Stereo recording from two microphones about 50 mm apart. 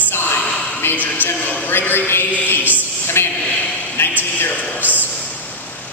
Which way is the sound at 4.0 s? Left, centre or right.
Left.